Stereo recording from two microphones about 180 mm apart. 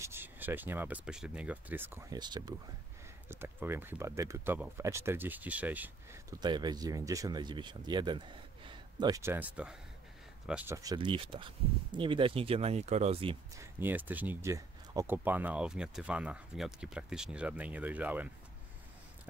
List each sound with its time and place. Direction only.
0.0 s speech: 10° right (ahead or behind)
3.3 s speech: 15° right (ahead or behind)
6.4 s speech: 25° right (ahead or behind); by 9.8 s 10° right (ahead or behind)
10.7 s speech: 20° right (ahead or behind)
13.6 s speech: 10° right (ahead or behind)